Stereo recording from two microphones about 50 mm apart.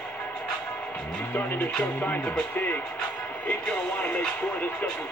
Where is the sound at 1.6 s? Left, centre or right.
Left.